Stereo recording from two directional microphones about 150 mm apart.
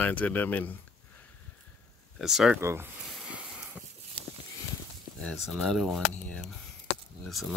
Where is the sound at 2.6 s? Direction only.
15° right (ahead or behind).